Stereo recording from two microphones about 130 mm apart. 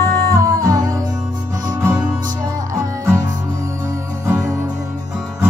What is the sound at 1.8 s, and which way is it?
Music, 15° right (ahead or behind).